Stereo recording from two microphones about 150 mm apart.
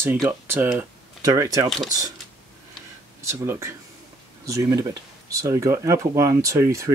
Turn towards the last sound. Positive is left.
turn(degrees=-20)  # may be behind; listen again after turning